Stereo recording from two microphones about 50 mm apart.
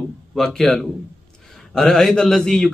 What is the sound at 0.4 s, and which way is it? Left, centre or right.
A man's voice, centre.